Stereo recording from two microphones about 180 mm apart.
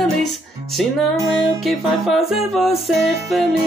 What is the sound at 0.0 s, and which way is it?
Music, centre (ahead or behind).